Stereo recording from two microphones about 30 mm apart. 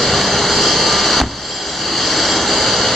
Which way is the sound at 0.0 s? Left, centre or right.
Centre.